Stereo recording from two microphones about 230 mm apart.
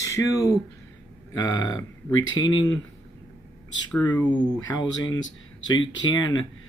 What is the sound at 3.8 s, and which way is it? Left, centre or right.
Speech, centre.